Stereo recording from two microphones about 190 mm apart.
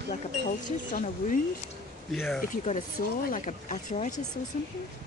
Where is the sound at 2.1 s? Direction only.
Centre (ahead or behind).